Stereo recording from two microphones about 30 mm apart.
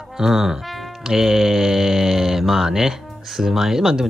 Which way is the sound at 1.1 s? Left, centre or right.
Centre.